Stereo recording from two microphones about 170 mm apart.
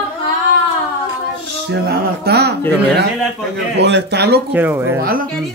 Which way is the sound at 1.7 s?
70° right (ahead or behind).